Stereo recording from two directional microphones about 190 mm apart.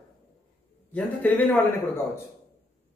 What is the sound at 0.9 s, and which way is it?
A man's voice, 10° left (ahead or behind).